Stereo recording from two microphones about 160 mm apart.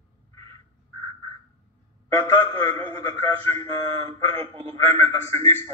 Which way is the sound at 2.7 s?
40° right (ahead or behind).